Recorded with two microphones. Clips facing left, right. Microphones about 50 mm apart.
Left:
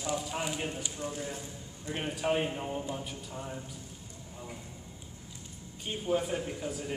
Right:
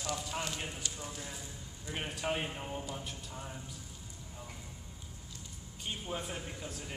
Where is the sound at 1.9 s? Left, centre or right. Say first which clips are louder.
Left 5 dB; centre.